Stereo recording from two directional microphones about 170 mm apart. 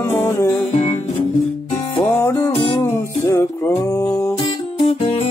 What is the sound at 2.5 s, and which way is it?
Music, 30° left (ahead or behind).